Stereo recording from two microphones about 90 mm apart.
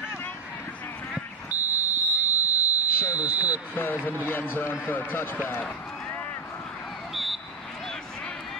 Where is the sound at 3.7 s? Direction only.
20° left (ahead or behind).